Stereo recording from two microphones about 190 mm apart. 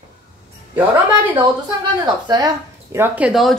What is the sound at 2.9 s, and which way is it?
Speech, 10° right (ahead or behind).